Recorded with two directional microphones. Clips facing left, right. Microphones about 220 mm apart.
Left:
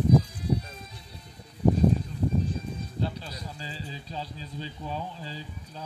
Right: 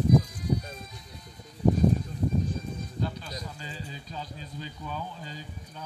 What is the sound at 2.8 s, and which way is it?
Speech, 30° left (ahead or behind).